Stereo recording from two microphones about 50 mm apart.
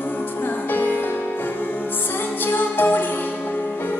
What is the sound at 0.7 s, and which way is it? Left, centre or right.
Music, left.